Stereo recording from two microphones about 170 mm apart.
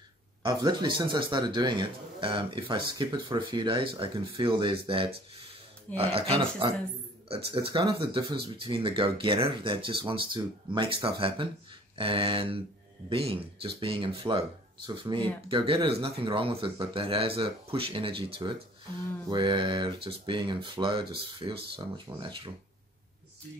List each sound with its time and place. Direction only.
0.4 s a man's voice: 25° right (ahead or behind)